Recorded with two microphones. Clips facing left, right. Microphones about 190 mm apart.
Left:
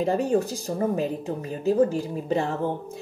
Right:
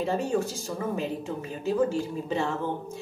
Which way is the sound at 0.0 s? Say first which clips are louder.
Left 4 dB; 35° left (ahead or behind).